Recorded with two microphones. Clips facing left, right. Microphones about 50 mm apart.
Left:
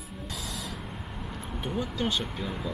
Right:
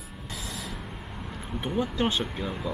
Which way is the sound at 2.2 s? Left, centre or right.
Centre.